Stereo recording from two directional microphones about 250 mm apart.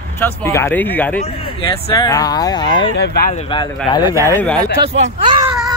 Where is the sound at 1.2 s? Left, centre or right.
Centre.